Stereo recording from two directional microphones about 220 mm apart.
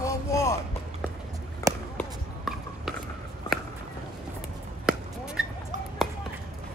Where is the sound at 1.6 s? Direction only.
15° left (ahead or behind).